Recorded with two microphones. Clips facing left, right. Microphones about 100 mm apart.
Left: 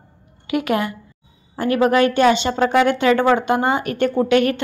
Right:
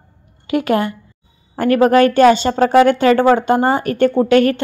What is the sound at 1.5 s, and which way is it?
A woman's voice, 50° right (ahead or behind).